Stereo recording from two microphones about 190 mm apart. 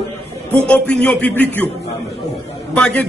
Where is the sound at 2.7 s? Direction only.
5° left (ahead or behind).